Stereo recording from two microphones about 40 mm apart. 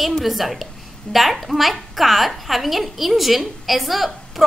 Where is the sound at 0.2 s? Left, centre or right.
Centre.